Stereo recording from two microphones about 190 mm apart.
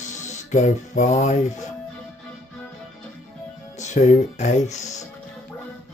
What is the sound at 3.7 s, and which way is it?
Speech, 40° left (ahead or behind).